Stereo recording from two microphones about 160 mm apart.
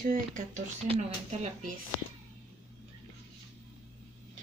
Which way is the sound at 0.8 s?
35° right (ahead or behind).